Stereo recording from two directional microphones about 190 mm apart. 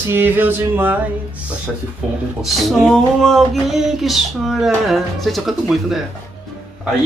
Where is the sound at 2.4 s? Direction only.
Centre (ahead or behind).